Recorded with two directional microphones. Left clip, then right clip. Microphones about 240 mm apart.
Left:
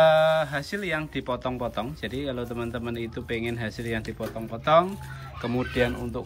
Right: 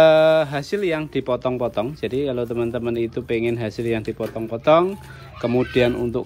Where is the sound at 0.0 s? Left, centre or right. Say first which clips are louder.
Right 6 dB; centre.